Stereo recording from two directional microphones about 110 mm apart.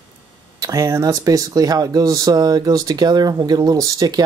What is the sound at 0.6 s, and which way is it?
Speech, 30° right (ahead or behind).